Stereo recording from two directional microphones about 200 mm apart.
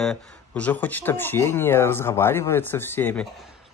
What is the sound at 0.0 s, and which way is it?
Speech, 5° left (ahead or behind).